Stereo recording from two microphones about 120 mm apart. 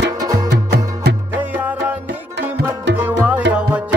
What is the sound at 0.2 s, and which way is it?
Music, 30° right (ahead or behind).